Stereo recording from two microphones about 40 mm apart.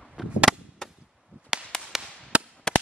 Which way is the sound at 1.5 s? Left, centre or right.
Centre.